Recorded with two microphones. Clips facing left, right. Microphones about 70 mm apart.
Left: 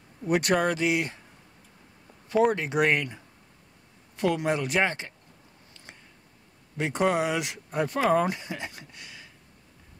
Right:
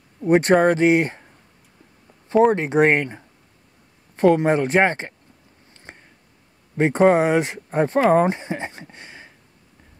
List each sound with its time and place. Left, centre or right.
0.2 s speech: right
2.5 s speech: right
5.9 s a sound: right
6.8 s speech: right